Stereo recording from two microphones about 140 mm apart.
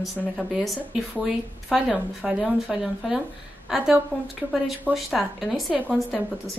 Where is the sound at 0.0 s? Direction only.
Centre (ahead or behind).